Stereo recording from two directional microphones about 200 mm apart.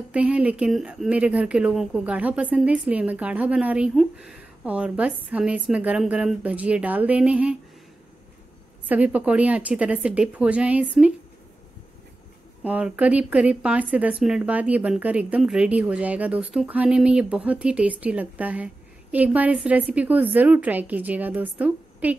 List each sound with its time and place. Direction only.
0.1 s speech: 5° right (ahead or behind)
8.8 s speech: 5° right (ahead or behind)
12.6 s speech: 5° right (ahead or behind)